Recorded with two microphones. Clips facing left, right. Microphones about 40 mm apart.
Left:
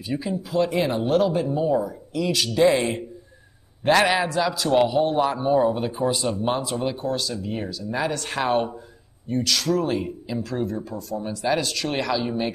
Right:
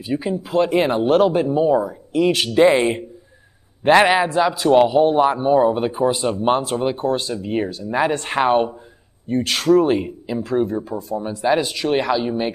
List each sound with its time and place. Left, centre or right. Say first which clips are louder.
0.2 s speech: right 4 dB; right
3.8 s speech: right 5 dB; right
5.8 s speech: right 5 dB; right
9.3 s speech: right 7 dB; right
10.0 s speech: right 4 dB; right